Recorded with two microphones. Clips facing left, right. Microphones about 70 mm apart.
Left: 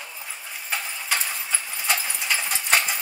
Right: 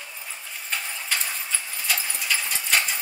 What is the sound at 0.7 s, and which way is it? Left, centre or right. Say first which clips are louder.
Horse: left 2 dB; centre.